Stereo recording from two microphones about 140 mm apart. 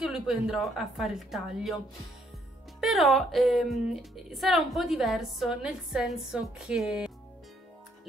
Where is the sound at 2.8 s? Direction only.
Centre (ahead or behind).